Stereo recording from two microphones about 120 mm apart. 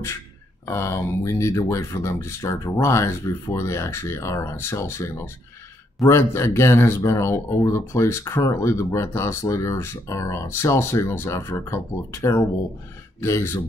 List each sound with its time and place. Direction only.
0.7 s speech: 25° left (ahead or behind)